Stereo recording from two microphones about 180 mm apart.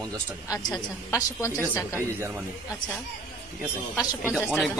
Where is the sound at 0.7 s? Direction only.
20° left (ahead or behind).